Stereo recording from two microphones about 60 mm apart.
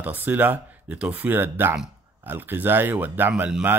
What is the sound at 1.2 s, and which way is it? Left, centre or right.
Speech, right.